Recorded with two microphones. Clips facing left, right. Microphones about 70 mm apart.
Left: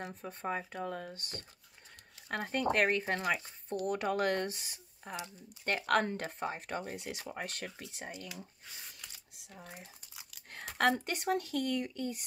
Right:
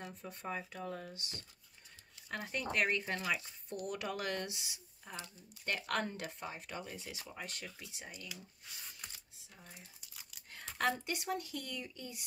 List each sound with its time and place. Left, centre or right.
0.0 s speech: left
7.0 s speech: left
9.3 s speech: left
10.5 s speech: left